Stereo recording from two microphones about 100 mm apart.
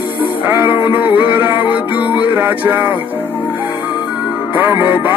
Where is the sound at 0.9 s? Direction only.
15° right (ahead or behind).